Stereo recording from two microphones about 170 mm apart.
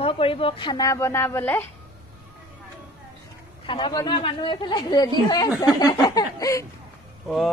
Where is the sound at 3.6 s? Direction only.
30° left (ahead or behind).